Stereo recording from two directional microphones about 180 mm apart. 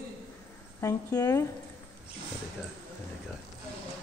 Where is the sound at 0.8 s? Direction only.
15° left (ahead or behind).